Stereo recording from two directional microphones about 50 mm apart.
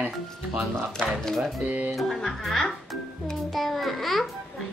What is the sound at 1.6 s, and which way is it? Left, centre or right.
Speech, right.